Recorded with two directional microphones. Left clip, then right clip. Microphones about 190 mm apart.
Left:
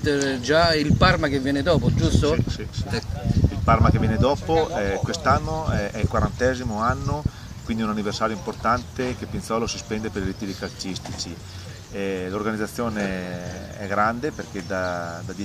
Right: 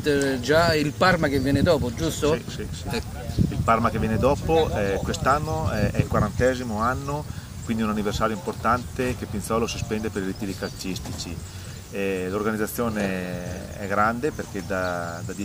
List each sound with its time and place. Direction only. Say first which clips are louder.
0.3 s speech: left 2 dB; 10° right (ahead or behind)
3.6 s speech: left 1 dB; centre (ahead or behind)
12.0 s speech: right 1 dB; centre (ahead or behind)